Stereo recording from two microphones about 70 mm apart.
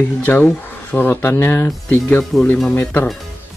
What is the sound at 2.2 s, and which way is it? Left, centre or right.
Speech, centre.